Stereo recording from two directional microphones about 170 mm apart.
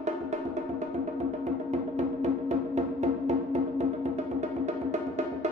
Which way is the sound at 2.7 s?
40° right (ahead or behind).